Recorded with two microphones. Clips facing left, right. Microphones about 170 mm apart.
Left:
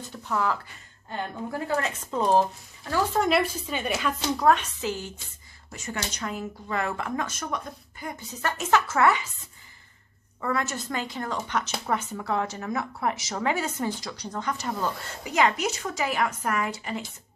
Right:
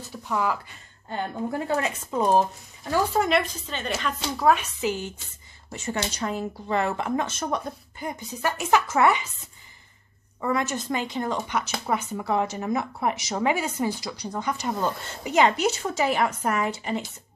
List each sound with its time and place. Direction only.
0.1 s speech: 5° right (ahead or behind)
1.8 s speech: 10° right (ahead or behind)
3.2 s a woman's voice: 5° left (ahead or behind)
4.4 s speech: 5° right (ahead or behind)
5.7 s speech: 25° right (ahead or behind)
8.2 s speech: 10° right (ahead or behind)
10.4 s speech: 15° right (ahead or behind)